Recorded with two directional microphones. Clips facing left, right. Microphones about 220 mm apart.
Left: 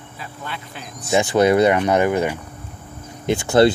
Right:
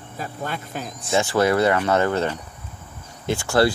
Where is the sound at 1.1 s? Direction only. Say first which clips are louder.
Left 4 dB; 20° left (ahead or behind).